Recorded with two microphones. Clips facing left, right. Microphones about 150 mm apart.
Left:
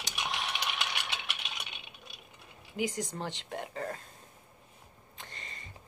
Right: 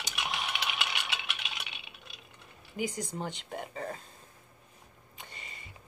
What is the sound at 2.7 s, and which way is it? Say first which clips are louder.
Speech: left 1 dB; centre (ahead or behind).